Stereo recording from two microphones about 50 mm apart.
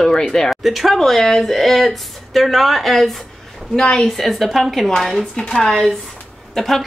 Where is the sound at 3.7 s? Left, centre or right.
Centre.